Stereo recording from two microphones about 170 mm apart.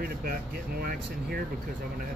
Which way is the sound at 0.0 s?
60° right (ahead or behind).